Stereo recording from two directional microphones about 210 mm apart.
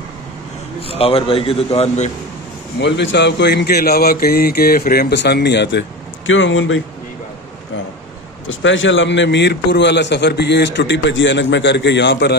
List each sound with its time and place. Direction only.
0.7 s a man's voice: 25° left (ahead or behind)
2.8 s speech: 55° left (ahead or behind)
8.5 s a man's voice: 65° left (ahead or behind)